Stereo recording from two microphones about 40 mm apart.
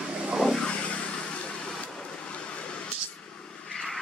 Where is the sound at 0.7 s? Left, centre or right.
Left.